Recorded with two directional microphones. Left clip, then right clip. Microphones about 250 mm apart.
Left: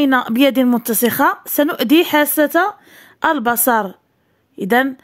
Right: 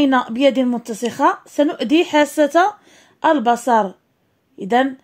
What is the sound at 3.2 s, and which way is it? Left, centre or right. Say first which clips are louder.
Speech: right 1 dB; left.